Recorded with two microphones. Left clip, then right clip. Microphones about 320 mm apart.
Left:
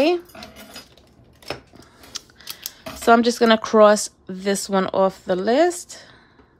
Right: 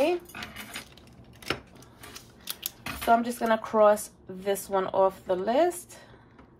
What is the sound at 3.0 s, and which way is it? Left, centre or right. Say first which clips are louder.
Speech: left 9 dB; left.